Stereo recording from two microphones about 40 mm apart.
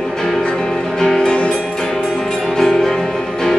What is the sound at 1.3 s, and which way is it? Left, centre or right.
Music, left.